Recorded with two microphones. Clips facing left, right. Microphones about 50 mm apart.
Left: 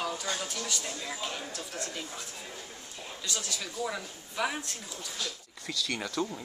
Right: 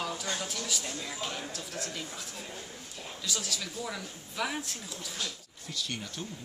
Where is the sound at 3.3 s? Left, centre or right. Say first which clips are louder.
Right 1 dB; centre.